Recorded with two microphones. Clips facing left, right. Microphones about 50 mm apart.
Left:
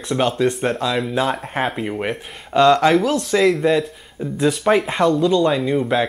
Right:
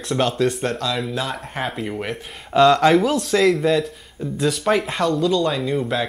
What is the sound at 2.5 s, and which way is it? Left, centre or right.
Speech, centre.